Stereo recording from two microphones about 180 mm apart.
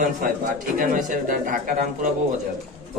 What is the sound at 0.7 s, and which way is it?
Speech, 50° right (ahead or behind).